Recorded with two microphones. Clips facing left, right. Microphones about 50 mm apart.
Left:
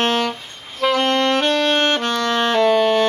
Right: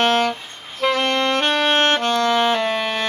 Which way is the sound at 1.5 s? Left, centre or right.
Centre.